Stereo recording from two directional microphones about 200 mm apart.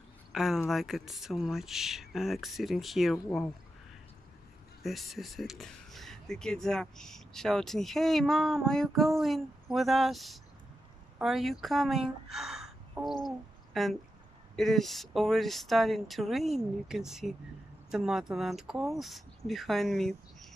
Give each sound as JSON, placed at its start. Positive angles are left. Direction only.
{"t": 0.3, "sound": "a sound", "side_deg": 0}
{"t": 0.7, "sound": "speech", "side_deg": 0}
{"t": 4.8, "sound": "speech", "side_deg": 0}